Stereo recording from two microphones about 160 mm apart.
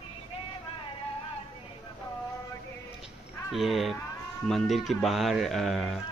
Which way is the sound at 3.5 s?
Centre (ahead or behind).